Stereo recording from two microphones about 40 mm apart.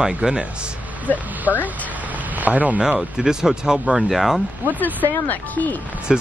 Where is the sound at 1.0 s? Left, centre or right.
Right.